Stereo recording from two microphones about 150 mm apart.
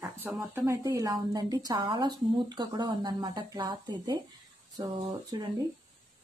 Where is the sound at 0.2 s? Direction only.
10° right (ahead or behind); by 4.2 s 30° right (ahead or behind).